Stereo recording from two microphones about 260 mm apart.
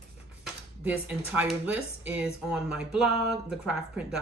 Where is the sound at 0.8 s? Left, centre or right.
Centre.